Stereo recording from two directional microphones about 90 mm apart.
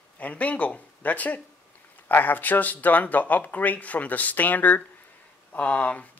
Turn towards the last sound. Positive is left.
turn(degrees=15)  # may be behind; listen again after turning